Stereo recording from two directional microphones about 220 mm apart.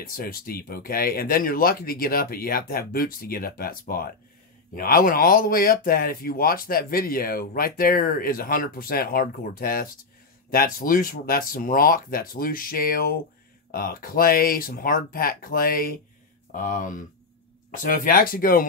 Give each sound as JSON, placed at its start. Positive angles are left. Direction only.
{"t": 0.0, "sound": "speech", "side_deg": 40}